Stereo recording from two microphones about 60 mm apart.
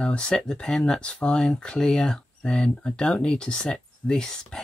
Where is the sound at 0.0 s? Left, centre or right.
Centre.